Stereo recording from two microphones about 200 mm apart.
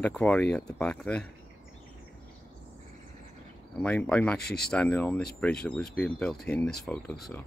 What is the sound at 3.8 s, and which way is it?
Speech, 5° left (ahead or behind).